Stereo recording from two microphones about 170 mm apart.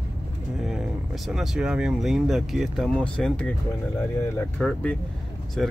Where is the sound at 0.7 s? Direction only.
Centre (ahead or behind).